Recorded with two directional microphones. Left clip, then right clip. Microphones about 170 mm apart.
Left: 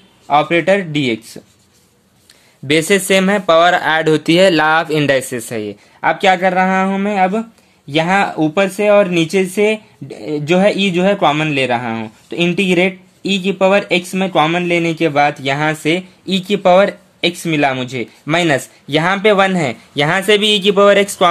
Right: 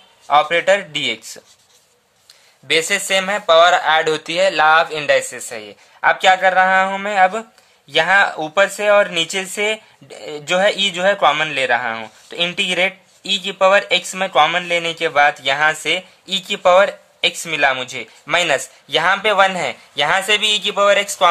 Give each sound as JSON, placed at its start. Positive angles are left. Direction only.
{"t": 0.3, "sound": "speech", "side_deg": 5}
{"t": 2.6, "sound": "speech", "side_deg": 30}